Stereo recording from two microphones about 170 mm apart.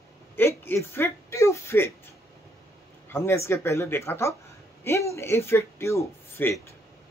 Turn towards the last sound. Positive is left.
turn(degrees=15)  # may be behind; listen again after turning